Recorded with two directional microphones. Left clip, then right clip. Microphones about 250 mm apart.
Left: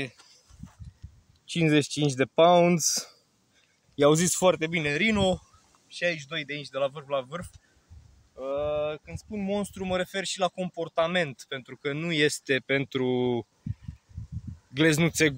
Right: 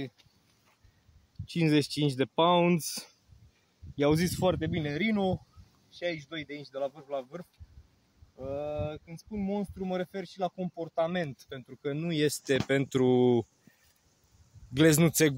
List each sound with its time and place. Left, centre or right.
1.5 s speech: centre; by 13.5 s right
14.7 s speech: right